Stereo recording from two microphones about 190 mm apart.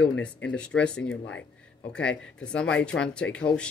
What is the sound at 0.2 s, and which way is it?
Speech, 5° left (ahead or behind).